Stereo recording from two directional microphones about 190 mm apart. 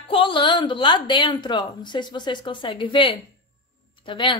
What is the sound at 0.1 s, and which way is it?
A woman's voice, 25° left (ahead or behind).